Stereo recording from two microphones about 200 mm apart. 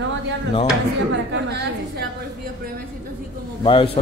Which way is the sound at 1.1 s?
60° right (ahead or behind).